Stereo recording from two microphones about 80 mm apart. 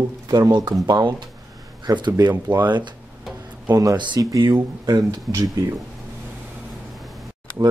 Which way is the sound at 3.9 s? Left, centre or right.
Right.